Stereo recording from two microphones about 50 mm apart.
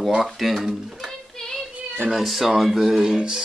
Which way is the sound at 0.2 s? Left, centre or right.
Centre.